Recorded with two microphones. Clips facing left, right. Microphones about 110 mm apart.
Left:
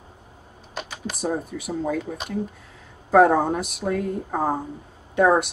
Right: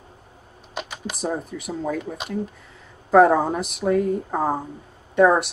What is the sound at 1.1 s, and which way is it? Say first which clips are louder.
A woman's voice: left 1 dB; centre (ahead or behind).